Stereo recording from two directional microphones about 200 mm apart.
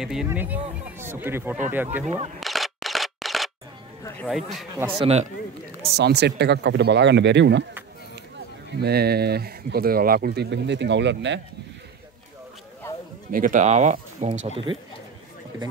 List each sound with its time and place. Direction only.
0.0 s speech: 5° right (ahead or behind)
2.0 s speech: 35° right (ahead or behind)
2.4 s a sound: centre (ahead or behind)
4.3 s speech: centre (ahead or behind)
5.0 s speech: 30° right (ahead or behind)
5.9 s speech: 55° right (ahead or behind)
8.8 s speech: 50° right (ahead or behind)
13.3 s speech: 40° right (ahead or behind)